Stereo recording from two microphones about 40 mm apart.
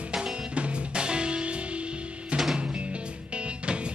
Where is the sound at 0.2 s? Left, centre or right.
Right.